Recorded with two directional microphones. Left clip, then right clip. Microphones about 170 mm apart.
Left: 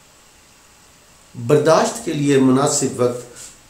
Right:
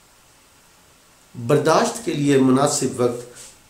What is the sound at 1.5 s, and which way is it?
Speech, 15° right (ahead or behind).